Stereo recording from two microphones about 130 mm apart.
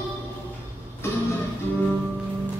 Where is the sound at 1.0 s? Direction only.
20° left (ahead or behind).